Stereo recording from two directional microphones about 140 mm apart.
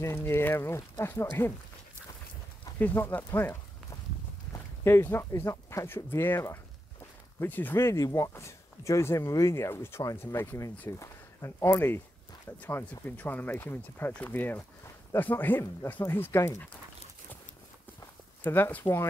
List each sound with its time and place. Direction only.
0.0 s speech: 15° left (ahead or behind)
2.8 s speech: 15° left (ahead or behind)
18.4 s speech: 15° left (ahead or behind)